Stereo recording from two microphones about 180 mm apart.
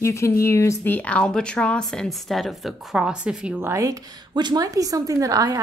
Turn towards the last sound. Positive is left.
turn(degrees=-20)  # may be behind; listen again after turning